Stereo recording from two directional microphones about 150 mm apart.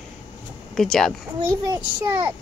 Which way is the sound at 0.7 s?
5° left (ahead or behind).